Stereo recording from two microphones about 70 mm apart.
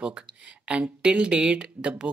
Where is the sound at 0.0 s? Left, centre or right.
Centre.